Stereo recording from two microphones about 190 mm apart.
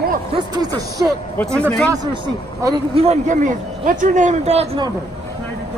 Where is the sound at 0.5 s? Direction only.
20° right (ahead or behind).